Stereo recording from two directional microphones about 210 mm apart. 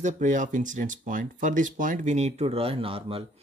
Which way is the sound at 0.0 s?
35° right (ahead or behind).